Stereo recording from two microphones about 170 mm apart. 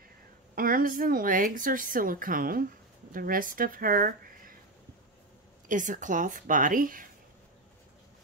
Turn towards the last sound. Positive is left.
turn(degrees=-55)  # may be behind; listen again after turning